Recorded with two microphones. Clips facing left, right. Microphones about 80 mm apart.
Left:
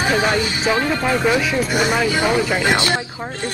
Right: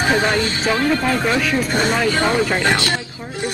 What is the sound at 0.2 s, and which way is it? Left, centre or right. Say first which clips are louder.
Speech: even; centre.